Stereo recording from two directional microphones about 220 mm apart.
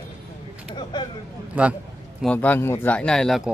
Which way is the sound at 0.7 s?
20° left (ahead or behind).